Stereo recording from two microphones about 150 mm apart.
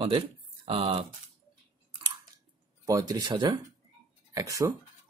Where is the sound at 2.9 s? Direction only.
25° right (ahead or behind).